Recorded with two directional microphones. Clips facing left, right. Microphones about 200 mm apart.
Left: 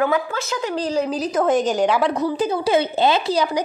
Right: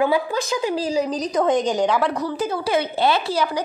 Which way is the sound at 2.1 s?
20° left (ahead or behind).